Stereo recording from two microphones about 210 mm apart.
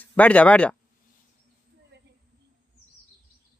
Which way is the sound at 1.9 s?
55° right (ahead or behind).